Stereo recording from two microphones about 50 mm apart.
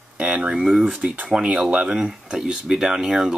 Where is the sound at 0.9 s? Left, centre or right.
Right.